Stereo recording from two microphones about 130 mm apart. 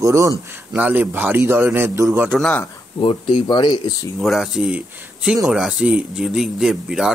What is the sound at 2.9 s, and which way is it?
Speech, 40° left (ahead or behind).